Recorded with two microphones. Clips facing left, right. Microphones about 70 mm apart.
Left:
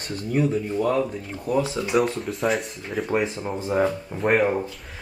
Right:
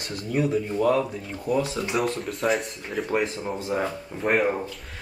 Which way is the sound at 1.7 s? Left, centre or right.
Centre.